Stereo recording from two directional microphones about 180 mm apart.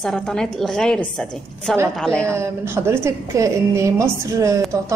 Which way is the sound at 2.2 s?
15° right (ahead or behind).